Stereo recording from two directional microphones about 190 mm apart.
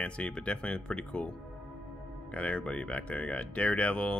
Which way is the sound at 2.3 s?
5° left (ahead or behind).